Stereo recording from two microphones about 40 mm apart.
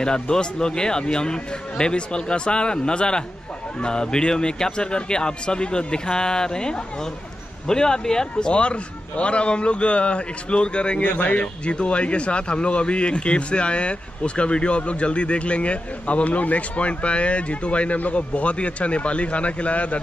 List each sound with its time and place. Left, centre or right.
0.0 s a man's voice: centre
11.1 s a man's voice: left